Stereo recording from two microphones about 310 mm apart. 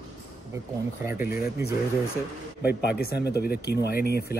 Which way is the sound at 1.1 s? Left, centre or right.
Left.